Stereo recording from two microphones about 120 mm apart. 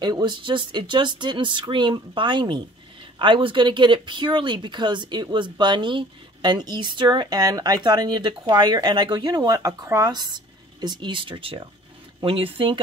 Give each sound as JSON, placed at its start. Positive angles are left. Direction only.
{"t": 0.0, "sound": "speech", "side_deg": -40}